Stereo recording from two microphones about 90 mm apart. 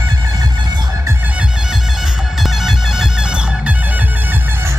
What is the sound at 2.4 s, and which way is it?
Music, 5° right (ahead or behind).